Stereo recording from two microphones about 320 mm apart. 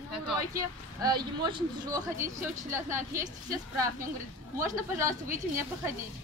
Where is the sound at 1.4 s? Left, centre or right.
Centre.